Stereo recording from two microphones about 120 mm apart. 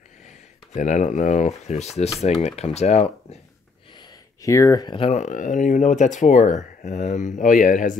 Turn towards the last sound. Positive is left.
turn(degrees=90)